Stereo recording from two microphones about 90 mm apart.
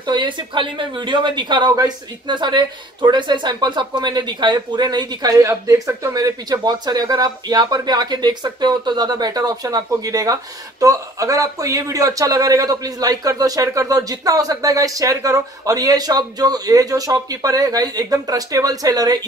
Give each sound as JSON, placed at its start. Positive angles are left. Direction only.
{"t": 0.0, "sound": "speech", "side_deg": -55}
{"t": 5.3, "sound": "speech", "side_deg": -35}